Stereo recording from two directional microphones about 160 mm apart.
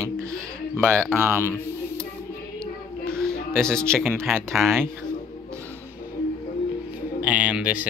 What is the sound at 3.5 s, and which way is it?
Speech, 5° left (ahead or behind).